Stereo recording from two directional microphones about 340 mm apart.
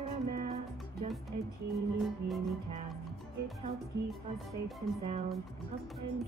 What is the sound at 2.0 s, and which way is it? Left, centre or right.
Music, centre.